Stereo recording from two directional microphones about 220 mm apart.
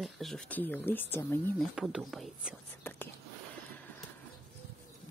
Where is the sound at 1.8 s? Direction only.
Centre (ahead or behind).